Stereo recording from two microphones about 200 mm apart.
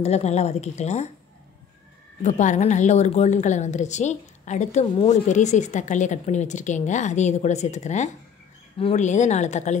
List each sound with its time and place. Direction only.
0.0 s a woman's voice: 35° left (ahead or behind)
2.2 s a woman's voice: 35° left (ahead or behind)